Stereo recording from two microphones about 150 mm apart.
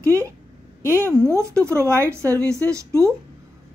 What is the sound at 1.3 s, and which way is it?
A woman's voice, 20° right (ahead or behind).